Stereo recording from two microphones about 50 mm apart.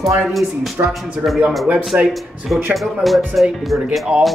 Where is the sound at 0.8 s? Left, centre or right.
Right.